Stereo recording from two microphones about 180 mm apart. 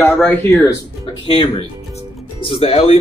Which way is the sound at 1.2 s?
30° left (ahead or behind).